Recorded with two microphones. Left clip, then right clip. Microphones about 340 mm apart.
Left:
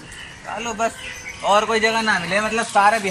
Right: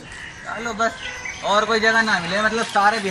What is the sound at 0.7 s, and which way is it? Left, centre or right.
A man's voice, centre.